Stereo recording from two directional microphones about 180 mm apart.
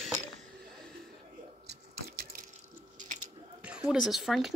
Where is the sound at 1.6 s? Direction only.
55° right (ahead or behind).